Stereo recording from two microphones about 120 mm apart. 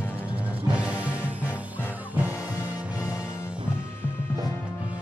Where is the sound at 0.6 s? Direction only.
10° right (ahead or behind).